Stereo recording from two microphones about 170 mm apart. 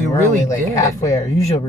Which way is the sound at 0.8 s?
20° left (ahead or behind).